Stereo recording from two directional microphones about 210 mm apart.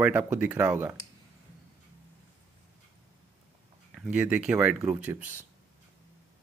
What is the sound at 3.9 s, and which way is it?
Speech, 5° right (ahead or behind).